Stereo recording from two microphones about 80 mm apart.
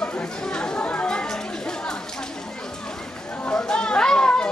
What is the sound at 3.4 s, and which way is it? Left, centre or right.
Chatter, centre.